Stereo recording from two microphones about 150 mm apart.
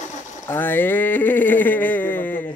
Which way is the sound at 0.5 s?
15° left (ahead or behind).